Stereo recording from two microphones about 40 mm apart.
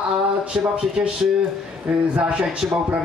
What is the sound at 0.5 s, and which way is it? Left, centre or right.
Speech, centre.